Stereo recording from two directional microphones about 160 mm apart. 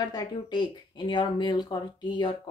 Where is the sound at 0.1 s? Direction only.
25° left (ahead or behind).